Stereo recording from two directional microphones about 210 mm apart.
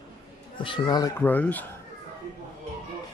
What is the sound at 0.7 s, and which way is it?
Speech, 20° left (ahead or behind).